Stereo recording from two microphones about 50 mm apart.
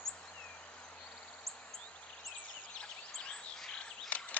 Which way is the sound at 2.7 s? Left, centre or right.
Centre.